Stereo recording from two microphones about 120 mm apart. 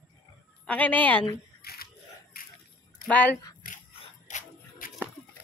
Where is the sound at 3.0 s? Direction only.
10° left (ahead or behind).